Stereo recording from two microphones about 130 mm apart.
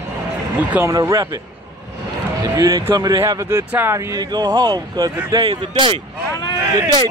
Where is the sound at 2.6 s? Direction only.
30° right (ahead or behind).